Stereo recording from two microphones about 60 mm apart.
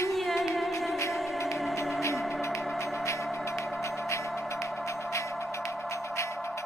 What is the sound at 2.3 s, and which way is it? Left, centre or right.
Music, left.